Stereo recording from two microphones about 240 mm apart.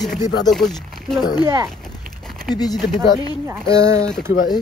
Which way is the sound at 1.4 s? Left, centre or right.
Centre.